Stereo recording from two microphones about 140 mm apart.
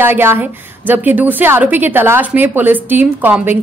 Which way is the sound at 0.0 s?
15° right (ahead or behind).